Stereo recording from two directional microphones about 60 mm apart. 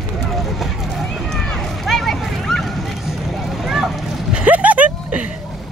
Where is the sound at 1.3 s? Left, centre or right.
Centre.